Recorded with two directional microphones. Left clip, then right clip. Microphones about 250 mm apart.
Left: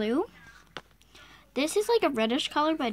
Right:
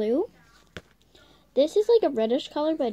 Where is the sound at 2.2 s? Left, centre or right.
Centre.